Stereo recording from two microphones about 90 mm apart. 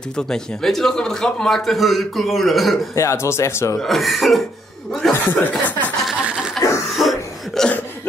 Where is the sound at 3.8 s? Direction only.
Centre (ahead or behind).